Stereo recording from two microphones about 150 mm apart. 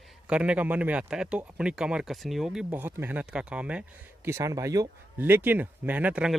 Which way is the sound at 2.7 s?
15° right (ahead or behind).